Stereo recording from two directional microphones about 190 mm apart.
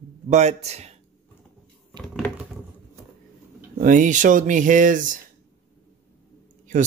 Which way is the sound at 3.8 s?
40° right (ahead or behind).